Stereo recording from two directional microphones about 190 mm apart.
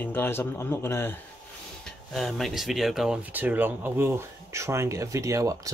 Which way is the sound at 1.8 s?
Centre (ahead or behind).